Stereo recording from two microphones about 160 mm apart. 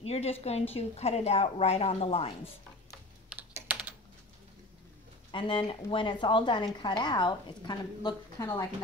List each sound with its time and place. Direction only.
0.0 s a woman's voice: 40° left (ahead or behind)
3.5 s typing: 10° right (ahead or behind)
5.3 s a woman's voice: 30° left (ahead or behind)